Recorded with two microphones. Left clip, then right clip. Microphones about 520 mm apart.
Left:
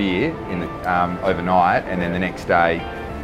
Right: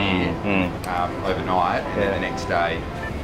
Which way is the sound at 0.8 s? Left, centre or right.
Left.